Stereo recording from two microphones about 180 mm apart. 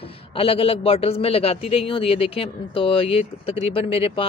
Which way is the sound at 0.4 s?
30° left (ahead or behind).